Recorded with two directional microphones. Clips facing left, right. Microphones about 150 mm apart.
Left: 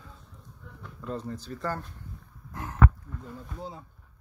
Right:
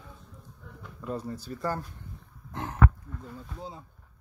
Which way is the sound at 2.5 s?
25° right (ahead or behind).